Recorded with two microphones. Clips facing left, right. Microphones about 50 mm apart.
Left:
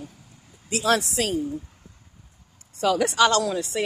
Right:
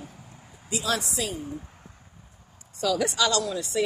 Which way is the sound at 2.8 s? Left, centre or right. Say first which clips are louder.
Left 5 dB; left.